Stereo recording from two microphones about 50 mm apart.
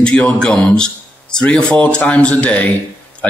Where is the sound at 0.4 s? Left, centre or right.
Centre.